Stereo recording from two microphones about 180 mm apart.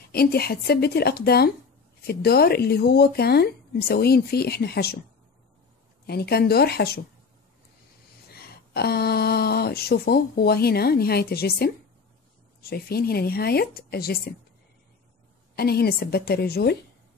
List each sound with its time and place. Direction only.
0.1 s speech: 60° left (ahead or behind)
6.0 s speech: 60° left (ahead or behind)
8.7 s speech: 60° left (ahead or behind)
15.5 s speech: 60° left (ahead or behind)